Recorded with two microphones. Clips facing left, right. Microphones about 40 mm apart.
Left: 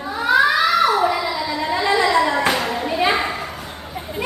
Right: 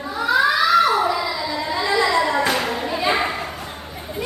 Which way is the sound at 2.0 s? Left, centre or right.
Centre.